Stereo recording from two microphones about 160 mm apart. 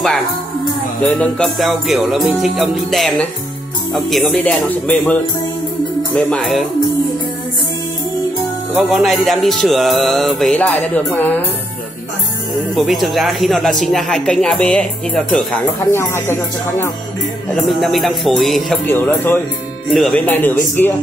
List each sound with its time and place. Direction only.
1.0 s music: 5° left (ahead or behind)
3.9 s speech: centre (ahead or behind)
6.1 s music: centre (ahead or behind)
8.7 s music: centre (ahead or behind)
12.7 s music: centre (ahead or behind)
15.8 s speech: 15° left (ahead or behind)
17.6 s music: centre (ahead or behind)
18.9 s speech: 15° left (ahead or behind)
19.9 s speech: centre (ahead or behind)